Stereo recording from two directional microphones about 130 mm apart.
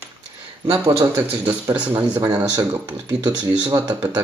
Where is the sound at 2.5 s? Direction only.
30° right (ahead or behind).